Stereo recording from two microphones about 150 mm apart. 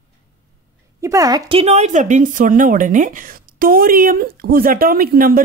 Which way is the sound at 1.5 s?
45° right (ahead or behind).